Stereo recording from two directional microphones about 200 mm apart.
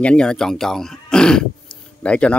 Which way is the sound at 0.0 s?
5° left (ahead or behind).